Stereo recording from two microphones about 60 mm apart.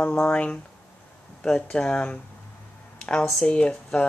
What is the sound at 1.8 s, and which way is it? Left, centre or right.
Speech, centre.